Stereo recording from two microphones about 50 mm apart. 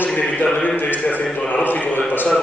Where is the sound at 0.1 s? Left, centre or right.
Left.